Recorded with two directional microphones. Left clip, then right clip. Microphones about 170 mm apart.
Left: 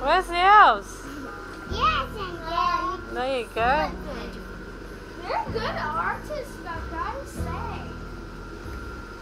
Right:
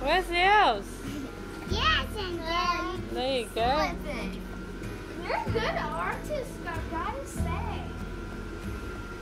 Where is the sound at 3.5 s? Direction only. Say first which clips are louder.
Left 5 dB; 20° right (ahead or behind).